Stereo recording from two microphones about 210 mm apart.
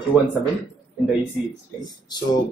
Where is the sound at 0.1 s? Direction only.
5° right (ahead or behind).